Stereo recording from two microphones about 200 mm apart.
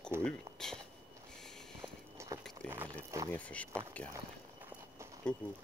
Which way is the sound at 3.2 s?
5° left (ahead or behind).